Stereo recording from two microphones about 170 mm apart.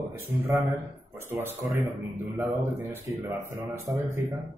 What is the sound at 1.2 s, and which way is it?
Speech, 15° right (ahead or behind).